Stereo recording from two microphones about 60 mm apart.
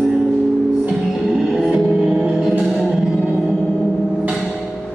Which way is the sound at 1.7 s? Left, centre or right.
Right.